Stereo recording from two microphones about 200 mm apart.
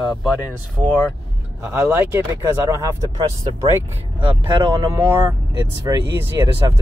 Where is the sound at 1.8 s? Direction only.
10° right (ahead or behind).